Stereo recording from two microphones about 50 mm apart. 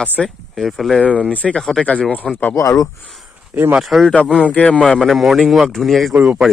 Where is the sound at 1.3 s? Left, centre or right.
Left.